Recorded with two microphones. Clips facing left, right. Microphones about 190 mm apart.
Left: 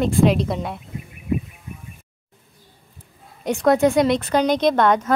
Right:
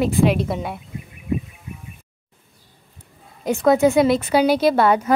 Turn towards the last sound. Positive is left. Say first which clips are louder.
# right 1 dB
turn(degrees=-10)  # may be behind; listen again after turning